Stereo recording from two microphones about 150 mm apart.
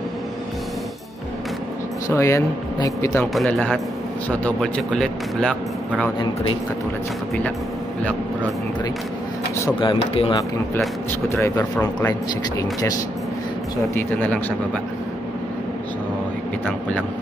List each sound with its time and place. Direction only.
2.0 s speech: 20° left (ahead or behind)
3.3 s a man's voice: 10° left (ahead or behind)
9.8 s speech: 35° left (ahead or behind)
11.2 s speech: 20° left (ahead or behind)
13.9 s speech: 10° left (ahead or behind)